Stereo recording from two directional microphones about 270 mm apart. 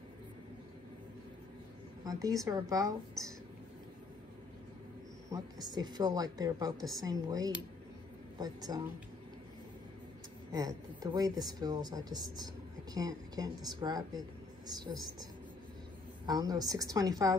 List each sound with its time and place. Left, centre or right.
2.0 s speech: centre
5.3 s speech: centre
10.5 s speech: centre
16.3 s speech: centre